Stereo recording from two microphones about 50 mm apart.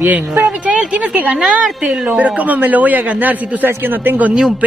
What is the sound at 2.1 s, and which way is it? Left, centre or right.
A man's voice, right.